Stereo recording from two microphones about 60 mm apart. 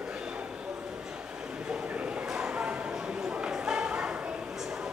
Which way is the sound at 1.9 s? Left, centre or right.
Right.